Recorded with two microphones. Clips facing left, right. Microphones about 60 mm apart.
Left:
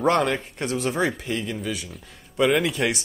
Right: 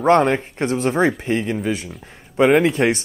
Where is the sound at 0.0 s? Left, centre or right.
Right.